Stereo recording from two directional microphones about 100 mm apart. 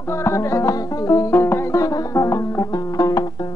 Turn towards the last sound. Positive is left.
turn(degrees=40)  # may be behind; listen again after turning